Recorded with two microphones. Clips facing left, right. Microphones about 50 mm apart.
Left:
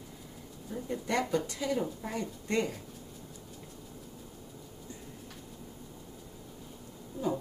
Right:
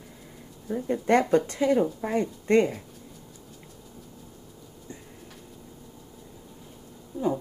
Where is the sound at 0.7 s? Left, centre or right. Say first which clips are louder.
Right 10 dB; right.